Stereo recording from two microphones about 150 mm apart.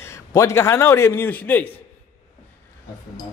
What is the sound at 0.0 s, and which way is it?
A man's voice, 20° left (ahead or behind).